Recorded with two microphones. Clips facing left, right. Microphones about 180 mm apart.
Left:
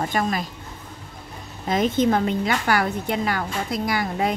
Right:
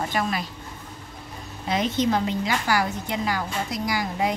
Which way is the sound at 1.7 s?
50° left (ahead or behind).